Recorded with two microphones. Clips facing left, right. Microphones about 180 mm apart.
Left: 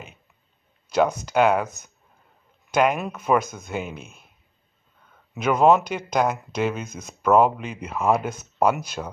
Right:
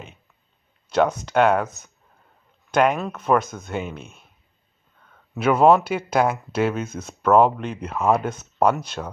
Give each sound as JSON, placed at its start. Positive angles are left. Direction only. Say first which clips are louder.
{"t": 1.2, "sound": "speech", "louder": "right 1 dB", "side_deg": 5}
{"t": 5.3, "sound": "speech", "louder": "right 2 dB", "side_deg": -5}
{"t": 7.1, "sound": "speech", "louder": "right 1 dB", "side_deg": 5}